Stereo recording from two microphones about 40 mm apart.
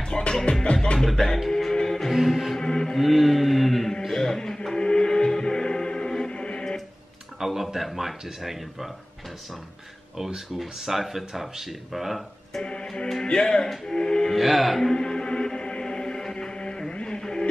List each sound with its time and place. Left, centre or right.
0.3 s music: centre
1.0 s speech: centre
1.5 s music: centre
2.6 s mantra: centre
3.0 s chant: centre
4.0 s music: centre
4.4 s music: centre
6.3 s music: left
7.3 s speech: centre
10.1 s speech: centre
13.2 s music: centre
14.3 s speech: centre
15.0 s music: centre
17.2 s a sound: centre